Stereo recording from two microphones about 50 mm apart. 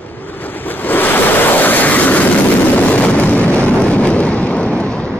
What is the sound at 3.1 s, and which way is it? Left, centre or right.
Explosion, left.